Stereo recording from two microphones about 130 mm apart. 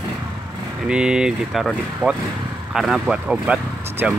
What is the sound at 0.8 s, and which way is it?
Speech, 5° right (ahead or behind).